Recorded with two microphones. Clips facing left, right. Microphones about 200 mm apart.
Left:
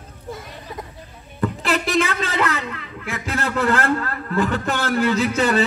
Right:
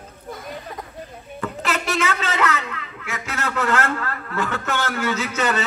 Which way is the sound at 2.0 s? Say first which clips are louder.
Even; 35° left (ahead or behind).